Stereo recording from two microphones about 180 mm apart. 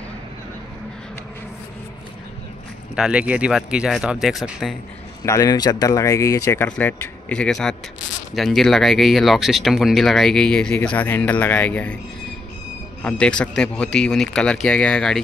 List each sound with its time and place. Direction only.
3.0 s speech: 5° right (ahead or behind)
5.2 s speech: 20° left (ahead or behind)
13.0 s speech: 5° left (ahead or behind)